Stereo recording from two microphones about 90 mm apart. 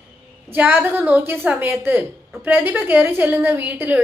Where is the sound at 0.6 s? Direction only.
20° right (ahead or behind).